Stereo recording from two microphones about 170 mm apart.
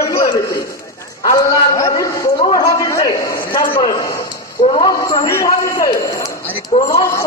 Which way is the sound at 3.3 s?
55° left (ahead or behind).